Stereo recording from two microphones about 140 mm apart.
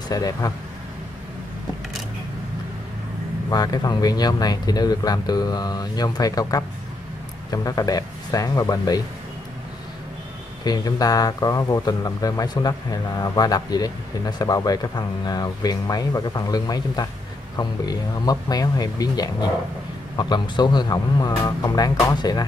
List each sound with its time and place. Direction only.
0.1 s speech: 25° left (ahead or behind)
3.4 s speech: 30° left (ahead or behind)
10.6 s speech: 30° left (ahead or behind)